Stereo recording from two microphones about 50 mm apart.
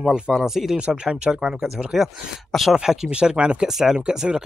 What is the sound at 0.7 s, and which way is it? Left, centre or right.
Speech, centre.